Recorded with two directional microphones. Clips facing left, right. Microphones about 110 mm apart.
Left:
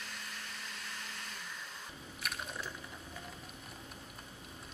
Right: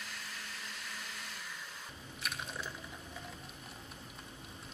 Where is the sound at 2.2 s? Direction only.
Centre (ahead or behind).